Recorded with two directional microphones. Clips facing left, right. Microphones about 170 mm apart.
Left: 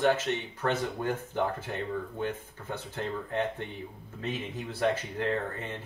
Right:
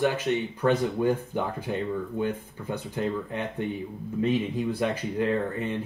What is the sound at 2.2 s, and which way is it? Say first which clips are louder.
Speech: right 5 dB; 15° right (ahead or behind).